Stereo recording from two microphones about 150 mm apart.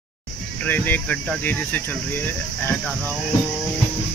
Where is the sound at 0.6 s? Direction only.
10° left (ahead or behind).